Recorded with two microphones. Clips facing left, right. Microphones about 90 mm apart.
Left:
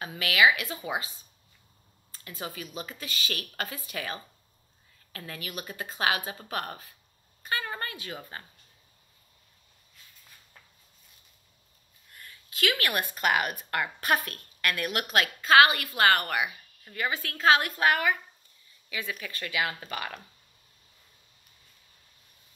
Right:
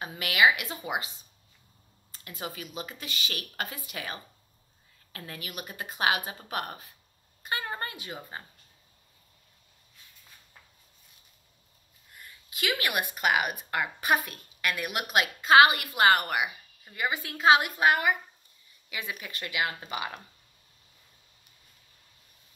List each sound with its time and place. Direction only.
0.0 s speech: 20° right (ahead or behind)
2.2 s speech: 20° right (ahead or behind)
12.1 s speech: 15° right (ahead or behind)